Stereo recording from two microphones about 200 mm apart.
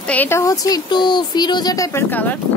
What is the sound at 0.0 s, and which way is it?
A woman's voice, 10° left (ahead or behind).